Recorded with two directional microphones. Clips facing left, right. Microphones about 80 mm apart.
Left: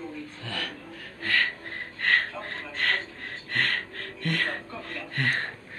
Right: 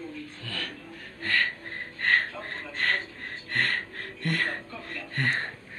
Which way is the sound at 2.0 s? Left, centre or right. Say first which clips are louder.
Even; centre.